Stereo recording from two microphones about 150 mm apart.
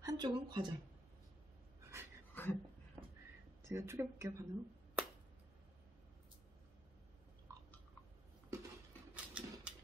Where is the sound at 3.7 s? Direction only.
20° right (ahead or behind).